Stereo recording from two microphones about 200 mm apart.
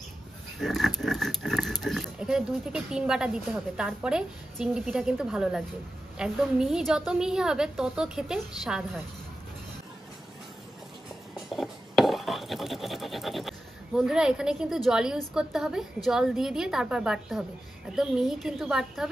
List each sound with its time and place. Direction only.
0.6 s speech: centre (ahead or behind)
11.4 s scratch: centre (ahead or behind)